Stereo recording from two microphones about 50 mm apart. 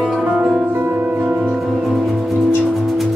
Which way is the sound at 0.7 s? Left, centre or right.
Right.